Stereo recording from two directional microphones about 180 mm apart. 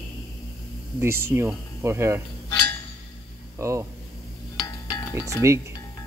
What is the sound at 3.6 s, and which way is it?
Speech, 15° right (ahead or behind).